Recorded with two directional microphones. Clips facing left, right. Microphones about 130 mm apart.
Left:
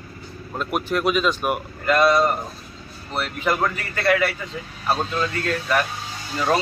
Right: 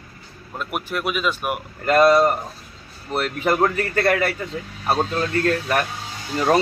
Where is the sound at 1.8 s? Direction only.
45° right (ahead or behind).